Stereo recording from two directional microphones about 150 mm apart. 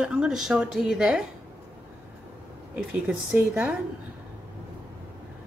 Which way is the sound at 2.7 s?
10° right (ahead or behind).